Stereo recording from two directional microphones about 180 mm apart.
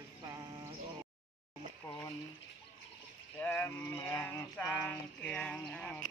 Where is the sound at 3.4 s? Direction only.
15° left (ahead or behind).